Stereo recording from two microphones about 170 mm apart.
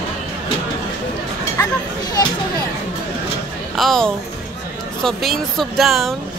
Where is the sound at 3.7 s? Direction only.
Centre (ahead or behind).